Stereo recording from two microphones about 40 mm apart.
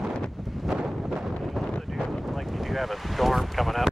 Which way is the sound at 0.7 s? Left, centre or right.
Right.